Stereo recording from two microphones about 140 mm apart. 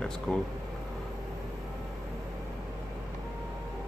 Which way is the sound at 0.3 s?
5° left (ahead or behind).